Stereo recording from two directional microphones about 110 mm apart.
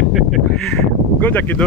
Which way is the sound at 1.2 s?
15° left (ahead or behind).